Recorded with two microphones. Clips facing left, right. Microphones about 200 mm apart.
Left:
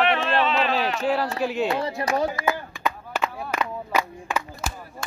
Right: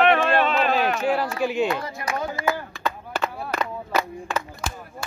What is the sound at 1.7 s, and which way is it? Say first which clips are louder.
Speech: left 3 dB; 30° left (ahead or behind).